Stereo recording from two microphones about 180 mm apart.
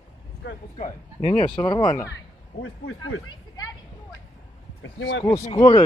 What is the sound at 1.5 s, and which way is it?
Speech, 25° left (ahead or behind).